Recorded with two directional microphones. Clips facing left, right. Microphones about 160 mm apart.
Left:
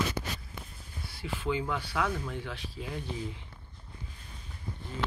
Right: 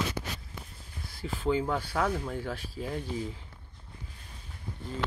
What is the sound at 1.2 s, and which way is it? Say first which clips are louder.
Speech: right 3 dB; 40° right (ahead or behind).